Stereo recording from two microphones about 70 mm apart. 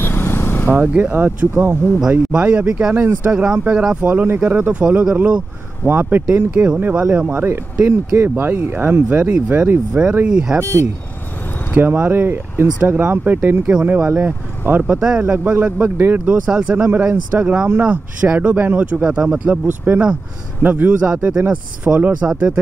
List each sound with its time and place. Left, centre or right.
0.0 s vehicle: left
1.1 s speech: right
2.0 s speech: centre
8.2 s speech: right; by 10.6 s centre
10.6 s speech: right
11.7 s speech: right
14.8 s speech: centre
15.2 s speech: right
16.4 s speech: centre
21.0 s speech: centre